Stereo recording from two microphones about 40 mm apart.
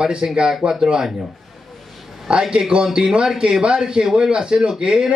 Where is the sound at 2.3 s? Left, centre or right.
Right.